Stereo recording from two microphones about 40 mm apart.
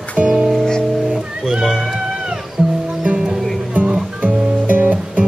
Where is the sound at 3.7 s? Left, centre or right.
Right.